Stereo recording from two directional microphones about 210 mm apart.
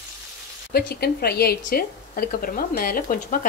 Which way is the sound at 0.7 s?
50° left (ahead or behind).